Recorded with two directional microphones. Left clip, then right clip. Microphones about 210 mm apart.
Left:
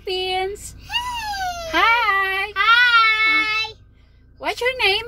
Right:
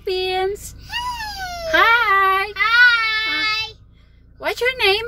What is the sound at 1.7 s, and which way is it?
Speech, 25° right (ahead or behind).